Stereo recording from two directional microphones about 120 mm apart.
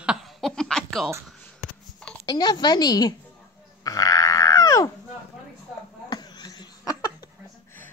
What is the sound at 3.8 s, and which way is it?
Goat, 30° left (ahead or behind).